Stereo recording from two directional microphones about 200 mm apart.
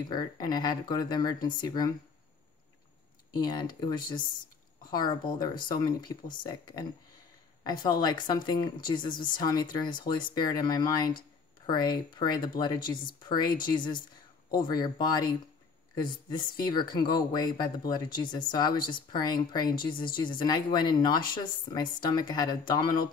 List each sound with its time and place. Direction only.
0.1 s speech: 20° left (ahead or behind)
3.3 s speech: 20° left (ahead or behind)
5.4 s speech: 20° left (ahead or behind)